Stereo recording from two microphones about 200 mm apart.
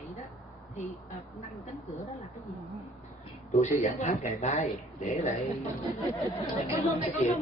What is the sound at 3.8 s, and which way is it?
Speech, 35° left (ahead or behind).